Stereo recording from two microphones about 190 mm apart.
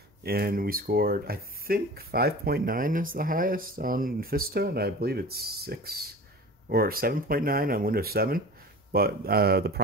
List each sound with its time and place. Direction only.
0.2 s speech: 55° right (ahead or behind)